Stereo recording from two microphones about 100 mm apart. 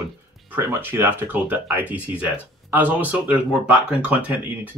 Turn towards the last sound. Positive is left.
turn(degrees=-15)  # may be behind; listen again after turning